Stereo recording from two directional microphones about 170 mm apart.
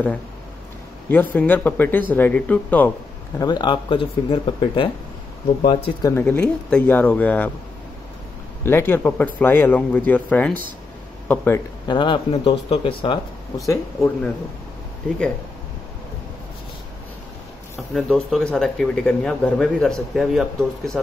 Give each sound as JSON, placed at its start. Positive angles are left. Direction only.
{"t": 1.1, "sound": "speech", "side_deg": 10}
{"t": 3.3, "sound": "speech", "side_deg": 25}
{"t": 6.0, "sound": "speech", "side_deg": 10}
{"t": 8.6, "sound": "speech", "side_deg": 15}
{"t": 11.9, "sound": "speech", "side_deg": 30}
{"t": 17.7, "sound": "speech", "side_deg": 0}